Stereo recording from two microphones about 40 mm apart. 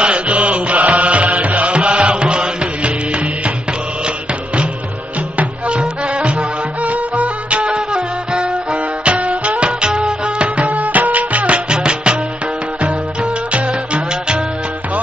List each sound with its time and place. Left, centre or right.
0.0 s mantra: right
5.7 s music: right
10.6 s music: right